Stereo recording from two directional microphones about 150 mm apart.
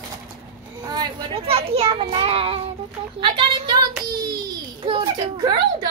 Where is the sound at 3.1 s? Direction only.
35° right (ahead or behind).